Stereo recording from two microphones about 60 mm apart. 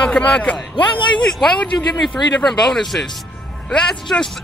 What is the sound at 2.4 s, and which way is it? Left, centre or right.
Speech, centre.